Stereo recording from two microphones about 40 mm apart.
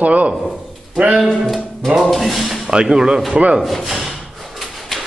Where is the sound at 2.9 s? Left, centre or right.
Centre.